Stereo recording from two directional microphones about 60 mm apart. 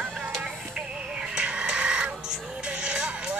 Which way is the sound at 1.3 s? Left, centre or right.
Centre.